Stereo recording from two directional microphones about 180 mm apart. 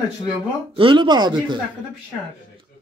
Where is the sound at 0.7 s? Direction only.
25° right (ahead or behind).